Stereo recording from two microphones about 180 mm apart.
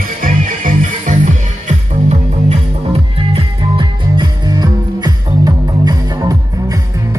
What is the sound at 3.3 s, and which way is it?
Music, 25° right (ahead or behind).